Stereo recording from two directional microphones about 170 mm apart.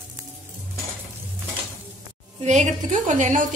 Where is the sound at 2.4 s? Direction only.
45° right (ahead or behind).